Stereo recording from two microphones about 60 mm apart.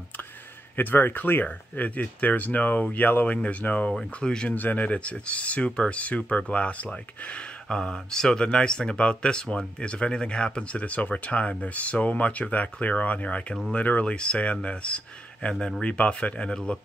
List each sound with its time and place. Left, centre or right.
0.7 s speech: left; by 4.5 s centre
4.5 s speech: left